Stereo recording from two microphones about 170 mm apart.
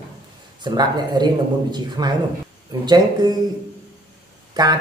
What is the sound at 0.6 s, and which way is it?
Speech, 25° right (ahead or behind).